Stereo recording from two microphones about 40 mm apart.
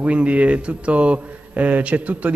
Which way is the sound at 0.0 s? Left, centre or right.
Right.